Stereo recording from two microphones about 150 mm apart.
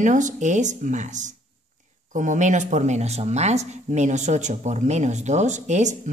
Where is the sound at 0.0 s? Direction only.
55° right (ahead or behind).